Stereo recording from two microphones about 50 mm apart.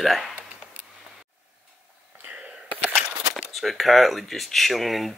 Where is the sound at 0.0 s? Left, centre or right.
Centre.